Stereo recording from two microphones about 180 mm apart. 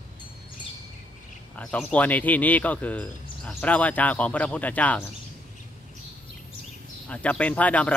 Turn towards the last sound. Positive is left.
turn(degrees=10)  # may be behind; listen again after turning